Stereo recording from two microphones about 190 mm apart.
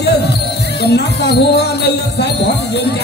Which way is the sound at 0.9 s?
60° left (ahead or behind).